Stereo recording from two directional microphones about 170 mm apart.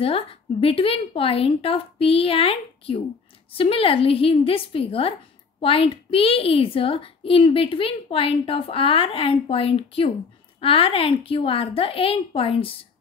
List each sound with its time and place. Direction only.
0.0 s a woman's voice: 35° left (ahead or behind)